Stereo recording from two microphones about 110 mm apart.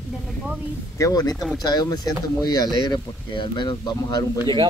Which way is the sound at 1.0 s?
35° left (ahead or behind).